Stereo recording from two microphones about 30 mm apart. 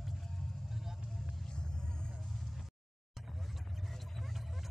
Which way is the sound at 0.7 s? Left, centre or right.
Centre.